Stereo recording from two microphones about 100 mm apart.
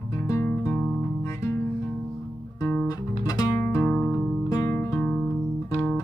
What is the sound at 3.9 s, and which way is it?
Music, 15° left (ahead or behind).